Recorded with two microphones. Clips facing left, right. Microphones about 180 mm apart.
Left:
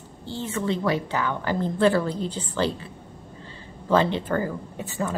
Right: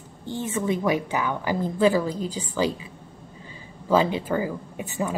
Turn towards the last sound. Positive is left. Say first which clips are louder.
# right 1 dB
turn(degrees=-15)  # may be behind; listen again after turning